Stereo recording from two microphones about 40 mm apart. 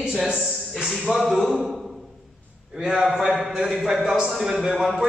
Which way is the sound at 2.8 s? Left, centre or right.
Centre.